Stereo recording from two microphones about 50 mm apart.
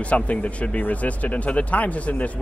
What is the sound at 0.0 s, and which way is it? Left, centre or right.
Speech, left.